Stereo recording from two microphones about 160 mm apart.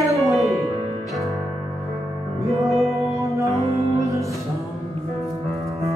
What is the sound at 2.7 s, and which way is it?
Music, centre (ahead or behind).